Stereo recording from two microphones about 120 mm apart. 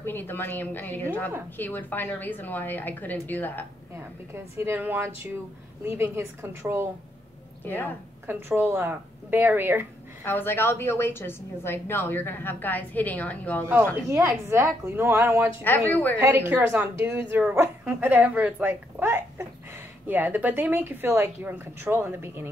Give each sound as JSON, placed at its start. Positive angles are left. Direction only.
{"t": 0.0, "sound": "a woman's voice", "side_deg": 15}
{"t": 3.9, "sound": "a woman's voice", "side_deg": -20}
{"t": 7.6, "sound": "a woman's voice", "side_deg": 15}
{"t": 8.3, "sound": "a woman's voice", "side_deg": -20}
{"t": 10.2, "sound": "a woman's voice", "side_deg": 15}
{"t": 14.0, "sound": "a woman's voice", "side_deg": -20}
{"t": 15.9, "sound": "a woman's voice", "side_deg": 15}
{"t": 16.2, "sound": "a woman's voice", "side_deg": -20}